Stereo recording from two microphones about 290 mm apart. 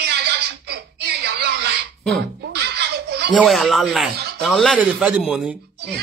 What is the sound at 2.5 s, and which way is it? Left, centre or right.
Baby laughter, right.